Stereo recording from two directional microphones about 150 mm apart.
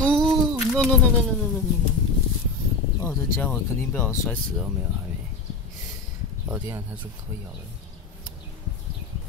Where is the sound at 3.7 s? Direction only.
15° left (ahead or behind).